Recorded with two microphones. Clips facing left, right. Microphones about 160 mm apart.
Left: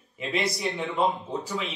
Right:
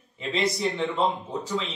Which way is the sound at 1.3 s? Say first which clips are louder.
Right 2 dB; 15° left (ahead or behind).